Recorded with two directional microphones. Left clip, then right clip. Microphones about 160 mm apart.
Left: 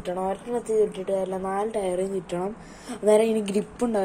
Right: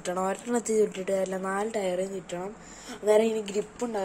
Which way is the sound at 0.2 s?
35° right (ahead or behind).